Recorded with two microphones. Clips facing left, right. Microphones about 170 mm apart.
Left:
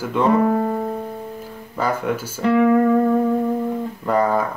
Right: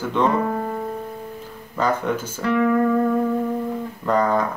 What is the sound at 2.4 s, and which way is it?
Music, 20° left (ahead or behind).